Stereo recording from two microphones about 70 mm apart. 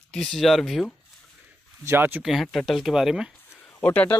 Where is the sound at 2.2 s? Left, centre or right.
Centre.